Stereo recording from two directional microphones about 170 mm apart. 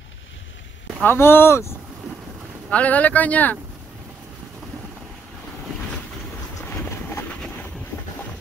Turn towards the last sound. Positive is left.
turn(degrees=5)  # may be behind; listen again after turning